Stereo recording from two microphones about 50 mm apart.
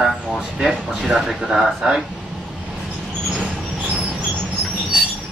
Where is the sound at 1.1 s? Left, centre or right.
Centre.